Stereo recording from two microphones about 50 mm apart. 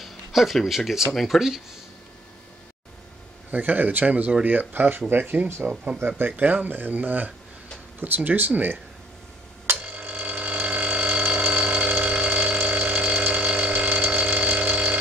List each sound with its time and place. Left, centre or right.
0.0 s a sound: centre
0.7 s speech: centre
3.5 s speech: right
9.8 s ratchet: right
12.0 s burping: right